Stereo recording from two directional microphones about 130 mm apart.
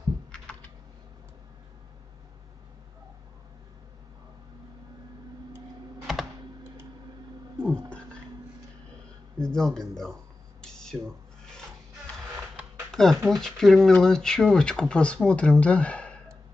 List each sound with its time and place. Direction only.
0.3 s typing: 10° left (ahead or behind)
6.1 s computer keyboard: 5° right (ahead or behind)
7.6 s a sound: 10° left (ahead or behind)
9.4 s speech: 5° left (ahead or behind)
10.6 s a sound: 5° left (ahead or behind)
12.9 s speech: 5° left (ahead or behind)